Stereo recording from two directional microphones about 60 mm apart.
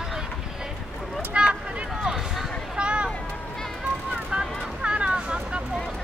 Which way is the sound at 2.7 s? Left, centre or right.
Centre.